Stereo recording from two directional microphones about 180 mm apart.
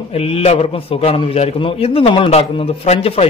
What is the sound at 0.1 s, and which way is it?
A man's voice, 35° left (ahead or behind).